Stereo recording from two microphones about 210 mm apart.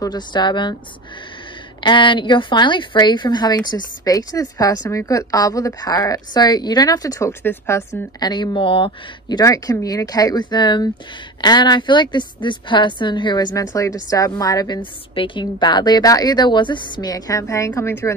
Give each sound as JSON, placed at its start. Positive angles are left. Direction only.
{"t": 0.0, "sound": "a woman's voice", "side_deg": 20}
{"t": 1.8, "sound": "a woman's voice", "side_deg": 25}